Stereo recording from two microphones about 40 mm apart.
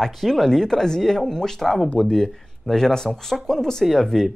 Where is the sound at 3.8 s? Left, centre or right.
Centre.